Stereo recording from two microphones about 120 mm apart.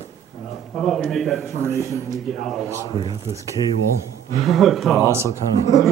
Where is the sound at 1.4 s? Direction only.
20° right (ahead or behind).